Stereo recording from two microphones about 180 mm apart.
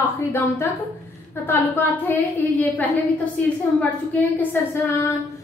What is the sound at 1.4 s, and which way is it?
A woman's voice, 10° left (ahead or behind).